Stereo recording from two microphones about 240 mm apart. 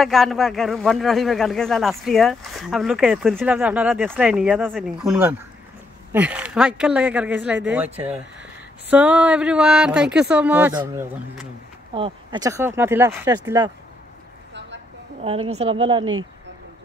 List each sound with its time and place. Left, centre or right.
0.0 s a man's voice: centre
11.9 s speech: right
15.5 s a woman's voice: right
16.0 s speech: right